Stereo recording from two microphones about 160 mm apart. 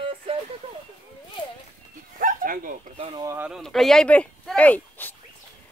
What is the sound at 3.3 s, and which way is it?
Speech, 10° right (ahead or behind).